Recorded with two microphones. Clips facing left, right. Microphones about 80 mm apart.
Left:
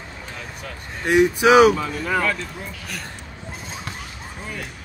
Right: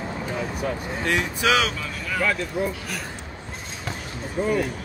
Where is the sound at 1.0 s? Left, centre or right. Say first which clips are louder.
Left 8 dB; centre.